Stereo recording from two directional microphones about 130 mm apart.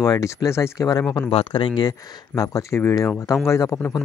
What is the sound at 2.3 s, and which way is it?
Speech, 25° left (ahead or behind).